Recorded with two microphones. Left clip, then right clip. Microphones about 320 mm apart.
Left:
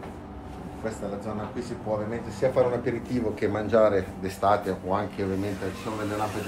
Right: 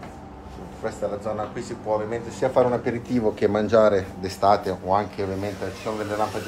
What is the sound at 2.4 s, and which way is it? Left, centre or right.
Speech, right.